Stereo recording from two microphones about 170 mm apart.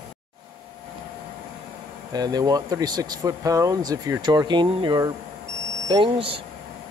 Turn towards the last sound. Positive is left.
turn(degrees=-30)  # may be behind; listen again after turning